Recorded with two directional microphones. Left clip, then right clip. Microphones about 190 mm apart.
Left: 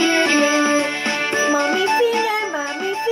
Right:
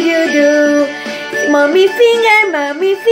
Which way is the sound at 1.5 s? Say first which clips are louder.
Right 12 dB; 15° right (ahead or behind).